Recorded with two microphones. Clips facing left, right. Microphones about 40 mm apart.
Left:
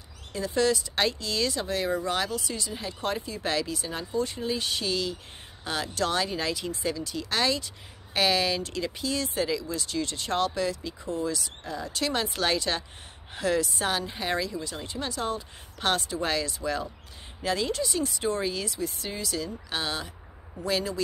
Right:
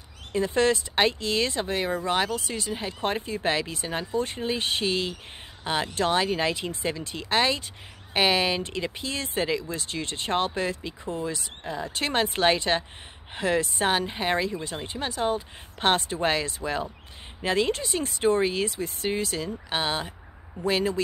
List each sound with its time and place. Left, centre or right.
0.3 s speech: right